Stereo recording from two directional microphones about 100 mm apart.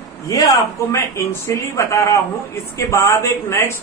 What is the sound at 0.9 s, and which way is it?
A man's voice, 25° left (ahead or behind).